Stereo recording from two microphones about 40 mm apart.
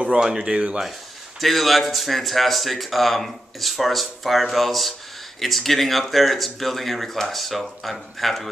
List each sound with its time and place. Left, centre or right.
0.2 s speech: centre
1.4 s speech: centre